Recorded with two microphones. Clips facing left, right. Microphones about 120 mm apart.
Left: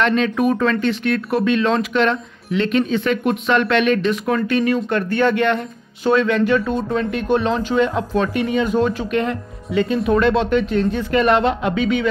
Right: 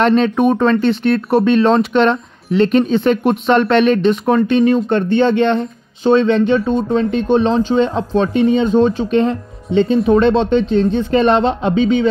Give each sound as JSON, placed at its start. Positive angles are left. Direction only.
{"t": 0.0, "sound": "speech", "side_deg": -35}